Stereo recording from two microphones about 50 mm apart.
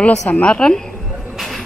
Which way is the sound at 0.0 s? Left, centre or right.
Left.